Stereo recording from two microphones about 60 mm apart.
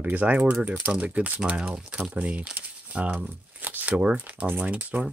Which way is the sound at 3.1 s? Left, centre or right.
Right.